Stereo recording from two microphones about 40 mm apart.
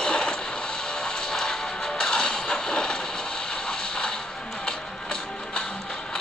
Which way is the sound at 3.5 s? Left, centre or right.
Left.